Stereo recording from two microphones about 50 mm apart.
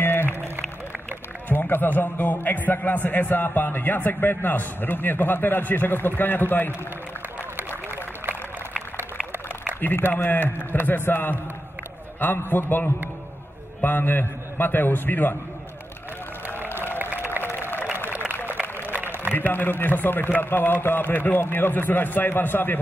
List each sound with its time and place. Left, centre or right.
0.0 s music: left
1.5 s a man's voice: left
9.8 s a sound: left
10.1 s a man's voice: left
16.7 s a sound: left
17.4 s applause: left
19.3 s a man's voice: left